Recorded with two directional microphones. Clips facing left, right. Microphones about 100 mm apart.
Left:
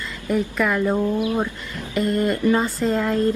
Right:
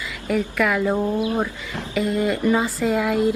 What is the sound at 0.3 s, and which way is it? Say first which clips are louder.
Speech: even; centre (ahead or behind).